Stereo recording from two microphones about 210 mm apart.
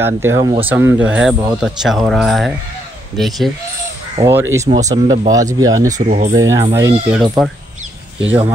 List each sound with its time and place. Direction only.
0.0 s speech: 10° right (ahead or behind)
0.7 s speech: 10° right (ahead or behind)
4.2 s speech: 10° right (ahead or behind)
5.9 s speech: 35° right (ahead or behind)
6.3 s speech: 15° right (ahead or behind)
7.2 s speech: centre (ahead or behind)